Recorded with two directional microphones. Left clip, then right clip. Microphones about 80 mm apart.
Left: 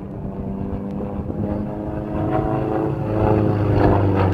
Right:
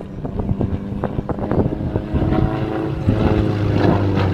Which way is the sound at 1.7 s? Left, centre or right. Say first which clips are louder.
Right 2 dB; right.